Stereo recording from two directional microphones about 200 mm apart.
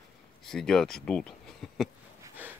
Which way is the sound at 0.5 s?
5° left (ahead or behind).